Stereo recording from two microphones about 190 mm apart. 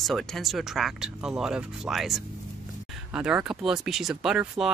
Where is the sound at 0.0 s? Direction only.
Centre (ahead or behind).